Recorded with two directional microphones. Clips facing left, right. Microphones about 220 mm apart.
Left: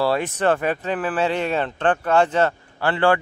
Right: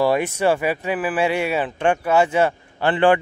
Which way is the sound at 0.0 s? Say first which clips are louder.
Right 2 dB; 15° right (ahead or behind).